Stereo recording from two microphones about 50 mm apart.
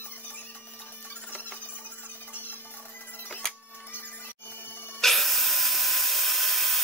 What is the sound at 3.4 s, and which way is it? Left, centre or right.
Printer, centre.